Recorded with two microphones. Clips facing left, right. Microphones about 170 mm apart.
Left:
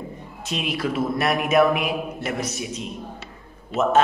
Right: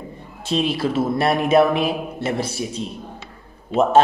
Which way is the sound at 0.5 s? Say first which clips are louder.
Right 5 dB; 30° right (ahead or behind).